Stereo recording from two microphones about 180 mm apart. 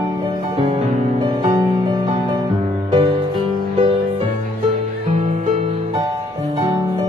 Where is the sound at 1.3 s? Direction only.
25° right (ahead or behind); by 5.5 s 40° right (ahead or behind).